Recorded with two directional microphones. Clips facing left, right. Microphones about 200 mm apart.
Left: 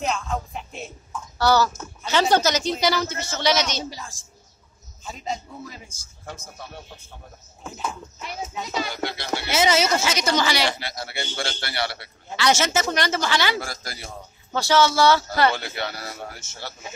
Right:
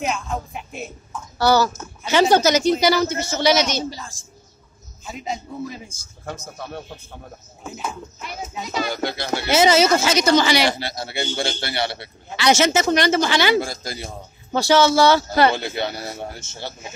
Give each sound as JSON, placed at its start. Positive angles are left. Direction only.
{"t": 0.0, "sound": "music", "side_deg": -10}
{"t": 1.4, "sound": "a man's voice", "side_deg": -10}
{"t": 5.0, "sound": "speech", "side_deg": -10}
{"t": 6.2, "sound": "a man's voice", "side_deg": -55}
{"t": 7.6, "sound": "speech", "side_deg": -5}
{"t": 8.9, "sound": "speech", "side_deg": -40}
{"t": 10.3, "sound": "a man's voice", "side_deg": -20}
{"t": 10.7, "sound": "a man's voice", "side_deg": -30}